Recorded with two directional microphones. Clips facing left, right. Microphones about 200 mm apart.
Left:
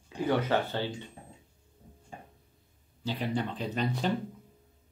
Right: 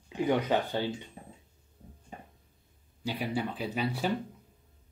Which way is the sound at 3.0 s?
10° right (ahead or behind).